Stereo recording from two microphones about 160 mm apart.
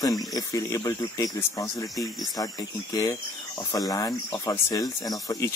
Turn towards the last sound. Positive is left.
turn(degrees=20)  # may be behind; listen again after turning